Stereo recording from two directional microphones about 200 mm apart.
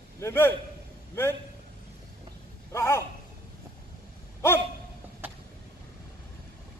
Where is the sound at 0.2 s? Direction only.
10° left (ahead or behind).